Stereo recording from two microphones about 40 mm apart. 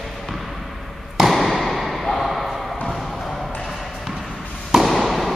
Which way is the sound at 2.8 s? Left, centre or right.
Centre.